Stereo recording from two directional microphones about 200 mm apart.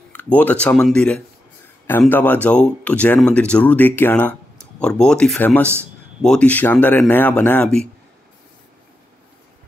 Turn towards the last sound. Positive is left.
turn(degrees=5)  # may be behind; listen again after turning